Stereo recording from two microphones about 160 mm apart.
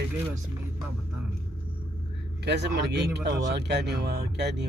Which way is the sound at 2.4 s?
90° right.